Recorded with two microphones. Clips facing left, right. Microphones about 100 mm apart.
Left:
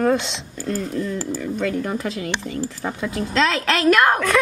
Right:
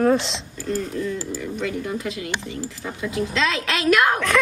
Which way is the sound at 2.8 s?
60° left (ahead or behind).